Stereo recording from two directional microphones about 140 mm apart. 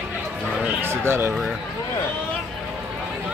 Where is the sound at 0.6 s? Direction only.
15° right (ahead or behind).